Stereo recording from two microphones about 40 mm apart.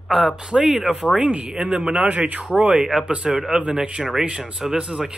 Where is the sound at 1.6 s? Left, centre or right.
Right.